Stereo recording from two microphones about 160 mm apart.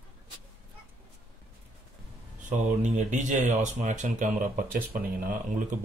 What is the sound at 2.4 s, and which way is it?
Speech, 50° right (ahead or behind).